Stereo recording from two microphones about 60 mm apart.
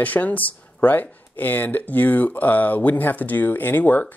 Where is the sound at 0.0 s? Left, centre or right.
Left.